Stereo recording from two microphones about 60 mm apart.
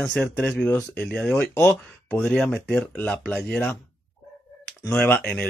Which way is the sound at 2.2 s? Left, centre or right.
Centre.